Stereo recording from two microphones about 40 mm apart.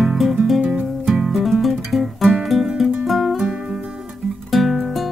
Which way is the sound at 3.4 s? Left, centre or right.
Centre.